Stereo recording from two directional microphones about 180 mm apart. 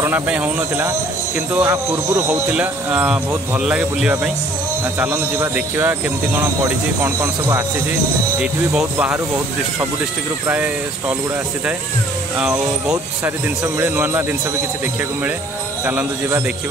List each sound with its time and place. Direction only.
0.0 s speech: 10° right (ahead or behind)
10.4 s speech: 10° right (ahead or behind)
12.8 s speech: 20° right (ahead or behind)
15.8 s speech: 10° right (ahead or behind)